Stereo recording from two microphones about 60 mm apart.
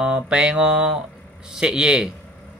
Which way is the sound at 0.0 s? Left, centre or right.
Centre.